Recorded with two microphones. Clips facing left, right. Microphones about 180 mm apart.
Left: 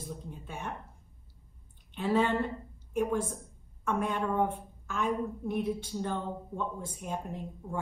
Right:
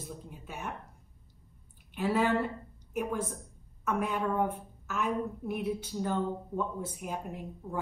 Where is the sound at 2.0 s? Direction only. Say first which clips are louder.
Even; 5° right (ahead or behind).